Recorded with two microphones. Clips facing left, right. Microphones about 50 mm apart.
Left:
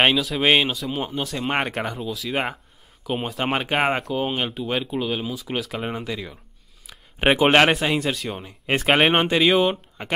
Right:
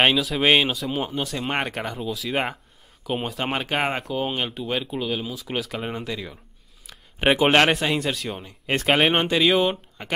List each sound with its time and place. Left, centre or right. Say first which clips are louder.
0.0 s speech: even; centre; by 9.3 s left
9.3 s speech: left 1 dB; centre